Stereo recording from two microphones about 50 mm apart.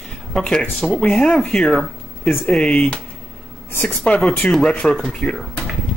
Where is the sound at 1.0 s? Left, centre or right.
Centre.